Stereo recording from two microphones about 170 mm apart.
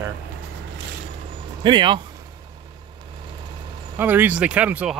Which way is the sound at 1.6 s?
30° right (ahead or behind).